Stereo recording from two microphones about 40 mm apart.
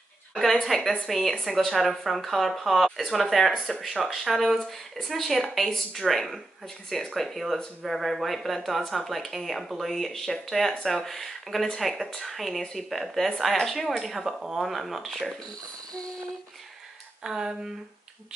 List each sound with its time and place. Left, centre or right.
0.3 s a woman's voice: centre
15.2 s speech: left
17.2 s speech: centre